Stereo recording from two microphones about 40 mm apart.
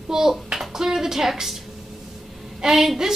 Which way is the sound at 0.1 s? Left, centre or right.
Centre.